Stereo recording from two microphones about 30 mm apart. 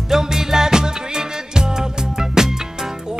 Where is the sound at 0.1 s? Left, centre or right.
Centre.